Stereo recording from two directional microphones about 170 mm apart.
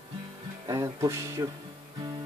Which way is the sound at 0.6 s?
20° right (ahead or behind).